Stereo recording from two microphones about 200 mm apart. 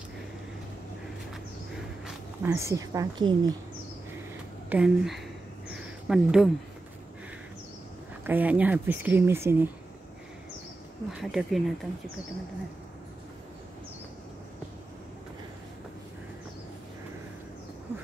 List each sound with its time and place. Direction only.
2.0 s speech: 10° right (ahead or behind)
4.6 s speech: 5° right (ahead or behind)
5.7 s a sound: 5° right (ahead or behind)
8.3 s speech: 10° right (ahead or behind)
11.1 s speech: centre (ahead or behind)